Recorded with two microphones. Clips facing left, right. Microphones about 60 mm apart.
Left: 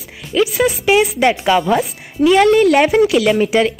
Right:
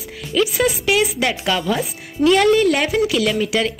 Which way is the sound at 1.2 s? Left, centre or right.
Left.